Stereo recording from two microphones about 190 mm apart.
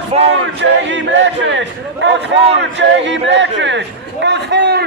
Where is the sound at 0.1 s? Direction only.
35° right (ahead or behind).